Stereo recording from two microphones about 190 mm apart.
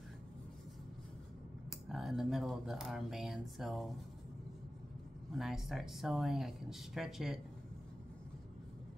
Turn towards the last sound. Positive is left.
turn(degrees=0)  # may be behind; listen again after turning